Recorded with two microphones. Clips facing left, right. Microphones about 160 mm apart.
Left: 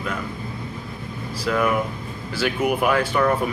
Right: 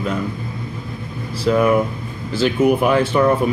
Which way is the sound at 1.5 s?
30° right (ahead or behind).